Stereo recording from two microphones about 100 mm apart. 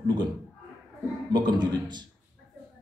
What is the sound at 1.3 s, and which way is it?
Speech, 45° right (ahead or behind).